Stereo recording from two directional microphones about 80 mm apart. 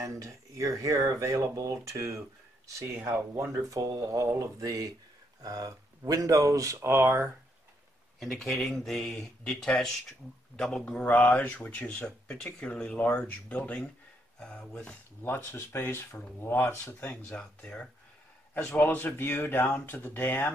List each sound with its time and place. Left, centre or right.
0.0 s speech: right
8.2 s speech: centre
15.2 s speech: left